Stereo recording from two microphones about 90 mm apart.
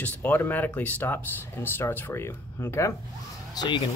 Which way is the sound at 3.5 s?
50° left (ahead or behind).